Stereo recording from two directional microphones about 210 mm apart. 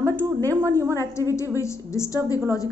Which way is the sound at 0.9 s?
15° left (ahead or behind).